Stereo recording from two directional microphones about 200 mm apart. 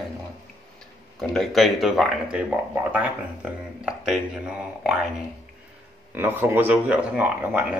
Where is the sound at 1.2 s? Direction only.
Centre (ahead or behind).